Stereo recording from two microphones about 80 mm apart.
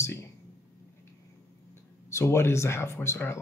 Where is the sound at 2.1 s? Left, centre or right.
Left.